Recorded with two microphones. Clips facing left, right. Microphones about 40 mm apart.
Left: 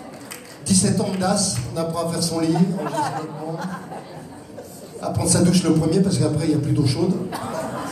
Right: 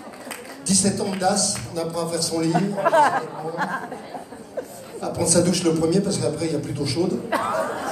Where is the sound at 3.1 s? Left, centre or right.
Right.